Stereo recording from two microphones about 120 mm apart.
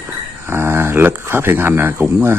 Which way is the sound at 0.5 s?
20° right (ahead or behind).